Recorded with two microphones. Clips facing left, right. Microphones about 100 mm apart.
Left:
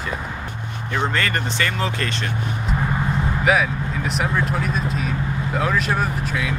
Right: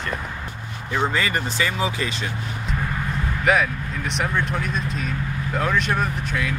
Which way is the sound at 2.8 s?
20° left (ahead or behind).